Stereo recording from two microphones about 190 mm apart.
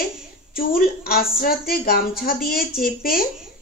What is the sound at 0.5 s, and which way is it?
A woman's voice, 50° left (ahead or behind).